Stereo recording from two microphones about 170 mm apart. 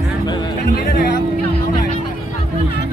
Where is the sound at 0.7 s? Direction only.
65° left (ahead or behind).